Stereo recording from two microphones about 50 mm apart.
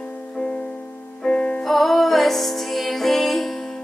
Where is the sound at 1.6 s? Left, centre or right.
Centre.